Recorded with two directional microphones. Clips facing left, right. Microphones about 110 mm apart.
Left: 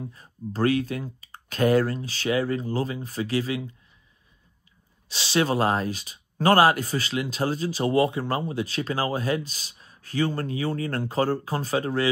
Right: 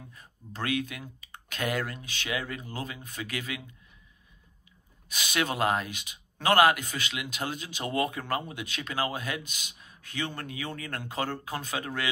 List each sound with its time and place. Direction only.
0.0 s speech: 35° left (ahead or behind)
5.0 s speech: 30° left (ahead or behind)